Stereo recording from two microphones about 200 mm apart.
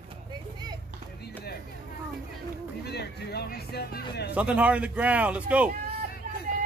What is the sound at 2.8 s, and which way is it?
Speech, 55° left (ahead or behind).